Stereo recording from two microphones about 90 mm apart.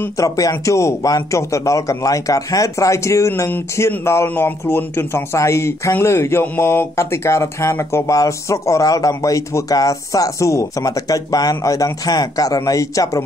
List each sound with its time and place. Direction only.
0.2 s a man's voice: 40° left (ahead or behind)